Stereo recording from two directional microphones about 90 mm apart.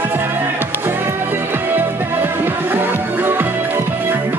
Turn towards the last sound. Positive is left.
turn(degrees=-25)  # may be behind; listen again after turning